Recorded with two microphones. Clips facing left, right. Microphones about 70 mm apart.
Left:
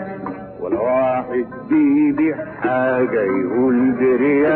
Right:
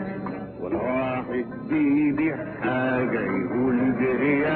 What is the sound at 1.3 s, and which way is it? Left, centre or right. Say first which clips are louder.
Music: left 8 dB; centre.